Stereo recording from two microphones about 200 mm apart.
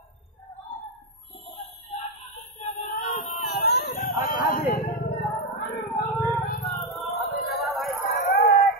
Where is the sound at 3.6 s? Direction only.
55° left (ahead or behind).